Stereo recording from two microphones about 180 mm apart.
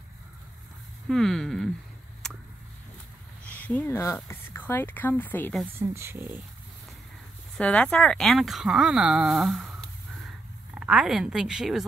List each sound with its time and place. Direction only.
1.0 s speech: centre (ahead or behind)
3.4 s speech: 10° left (ahead or behind)
5.8 s speech: 15° right (ahead or behind)
7.5 s speech: 5° left (ahead or behind)